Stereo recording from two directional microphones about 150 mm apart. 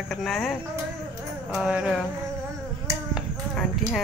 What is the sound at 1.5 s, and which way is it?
Speech, 5° right (ahead or behind).